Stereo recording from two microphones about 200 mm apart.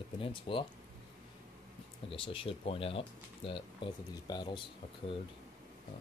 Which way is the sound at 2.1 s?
25° left (ahead or behind).